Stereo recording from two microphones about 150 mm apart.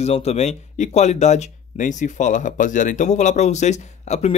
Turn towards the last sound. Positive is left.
turn(degrees=50)  # may be behind; listen again after turning